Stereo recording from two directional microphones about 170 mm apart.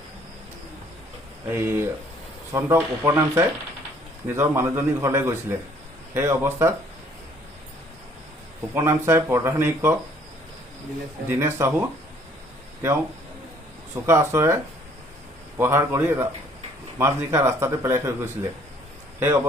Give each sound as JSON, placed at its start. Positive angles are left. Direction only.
{"t": 1.5, "sound": "speech", "side_deg": -15}
{"t": 8.7, "sound": "speech", "side_deg": -15}
{"t": 11.2, "sound": "speech", "side_deg": -15}
{"t": 14.0, "sound": "a man's voice", "side_deg": -15}